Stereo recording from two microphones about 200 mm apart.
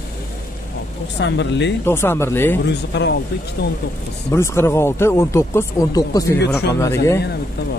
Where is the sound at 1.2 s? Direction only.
60° left (ahead or behind).